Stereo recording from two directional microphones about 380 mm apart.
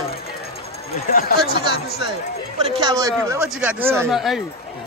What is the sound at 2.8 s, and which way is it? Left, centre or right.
Speech, centre.